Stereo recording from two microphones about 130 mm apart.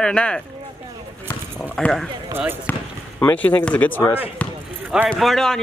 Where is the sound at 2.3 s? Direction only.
15° right (ahead or behind).